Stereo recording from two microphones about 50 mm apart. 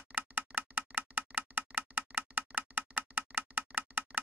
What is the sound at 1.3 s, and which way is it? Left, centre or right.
Rattle, right.